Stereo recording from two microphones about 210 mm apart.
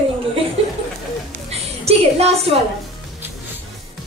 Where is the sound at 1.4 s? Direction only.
30° right (ahead or behind).